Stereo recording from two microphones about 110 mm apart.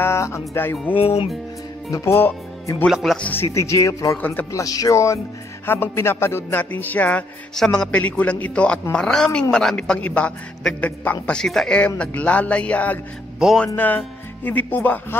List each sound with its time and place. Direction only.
0.0 s speech: 25° left (ahead or behind)
0.9 s speech: 60° left (ahead or behind)
1.9 s speech: 30° left (ahead or behind)
2.9 s speech: centre (ahead or behind)
3.3 s speech: 25° left (ahead or behind)
13.4 s speech: 5° right (ahead or behind)
13.7 s speech: 15° left (ahead or behind)